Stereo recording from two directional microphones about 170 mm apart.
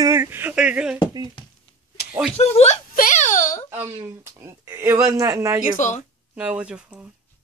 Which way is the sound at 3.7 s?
15° right (ahead or behind).